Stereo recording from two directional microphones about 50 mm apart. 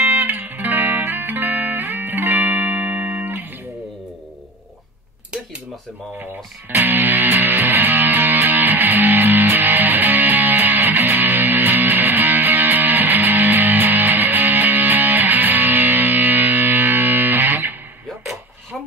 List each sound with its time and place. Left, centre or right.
0.0 s music: right
6.7 s music: right